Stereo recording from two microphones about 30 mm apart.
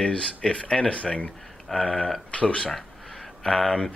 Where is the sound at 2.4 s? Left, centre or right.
Left.